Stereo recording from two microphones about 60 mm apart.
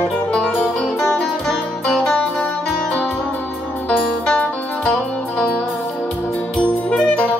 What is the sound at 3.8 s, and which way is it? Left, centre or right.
Music, left.